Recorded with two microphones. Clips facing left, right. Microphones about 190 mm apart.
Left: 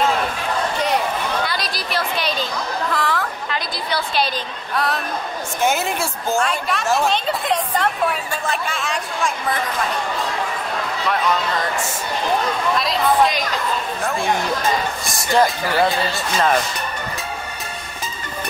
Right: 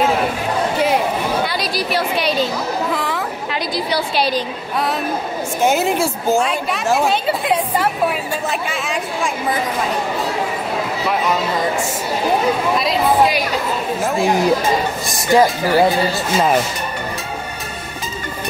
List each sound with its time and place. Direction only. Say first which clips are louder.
0.7 s chatter: right 5 dB; 5° right (ahead or behind)
4.7 s a woman's voice: right 2 dB; 5° right (ahead or behind)
11.1 s a woman's voice: right 1 dB; 5° right (ahead or behind)
15.6 s a woman's voice: right 4 dB; 10° right (ahead or behind)